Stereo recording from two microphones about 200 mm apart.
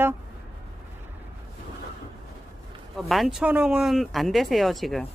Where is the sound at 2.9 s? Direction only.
Centre (ahead or behind).